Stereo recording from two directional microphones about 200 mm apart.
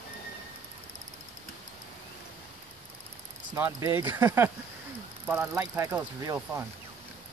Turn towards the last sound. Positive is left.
turn(degrees=-15)  # may be behind; listen again after turning